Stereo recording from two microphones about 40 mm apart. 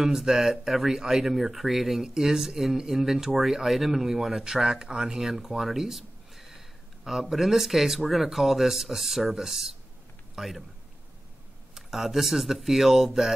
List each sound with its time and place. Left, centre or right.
0.0 s speech: centre
4.5 s a man's voice: centre
11.7 s speech: centre